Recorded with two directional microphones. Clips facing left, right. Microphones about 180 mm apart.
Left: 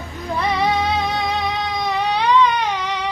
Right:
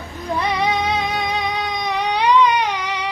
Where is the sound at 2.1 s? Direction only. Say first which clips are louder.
Right 2 dB; 15° right (ahead or behind).